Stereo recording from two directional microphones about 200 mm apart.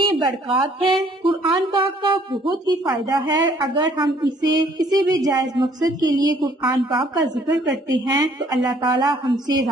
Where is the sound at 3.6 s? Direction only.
25° right (ahead or behind).